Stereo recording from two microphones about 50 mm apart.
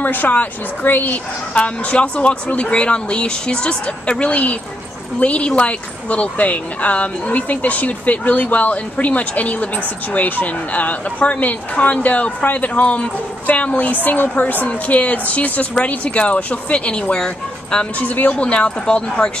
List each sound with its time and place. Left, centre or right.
0.0 s speech: left
1.5 s speech: left
17.9 s speech: left
18.3 s speech: centre